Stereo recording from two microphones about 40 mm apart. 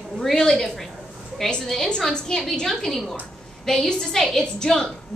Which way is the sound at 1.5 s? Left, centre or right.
Centre.